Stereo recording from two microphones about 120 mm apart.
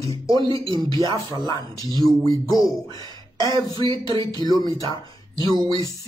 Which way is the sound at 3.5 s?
45° right (ahead or behind).